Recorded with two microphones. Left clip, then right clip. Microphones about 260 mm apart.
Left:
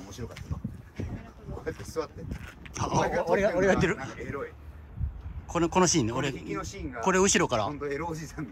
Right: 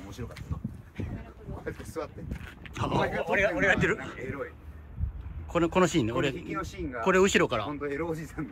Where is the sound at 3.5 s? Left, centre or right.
Centre.